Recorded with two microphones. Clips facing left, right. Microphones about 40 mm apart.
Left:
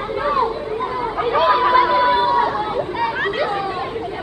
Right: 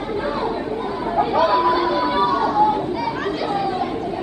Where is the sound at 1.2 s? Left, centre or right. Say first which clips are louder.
Left 1 dB; left.